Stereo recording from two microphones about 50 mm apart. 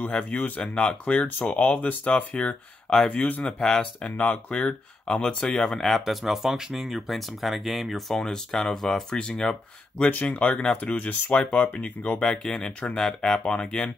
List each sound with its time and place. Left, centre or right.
0.1 s speech: left
2.3 s speech: left
3.1 s speech: left
4.6 s speech: left
5.7 s speech: centre
8.2 s speech: centre
10.0 s speech: left